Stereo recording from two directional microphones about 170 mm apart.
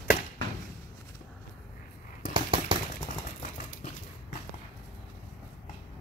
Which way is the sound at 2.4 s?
30° right (ahead or behind).